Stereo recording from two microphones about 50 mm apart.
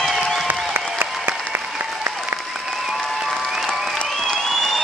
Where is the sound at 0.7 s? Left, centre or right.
Right.